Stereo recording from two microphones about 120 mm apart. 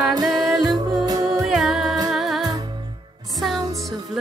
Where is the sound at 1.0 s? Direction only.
30° right (ahead or behind).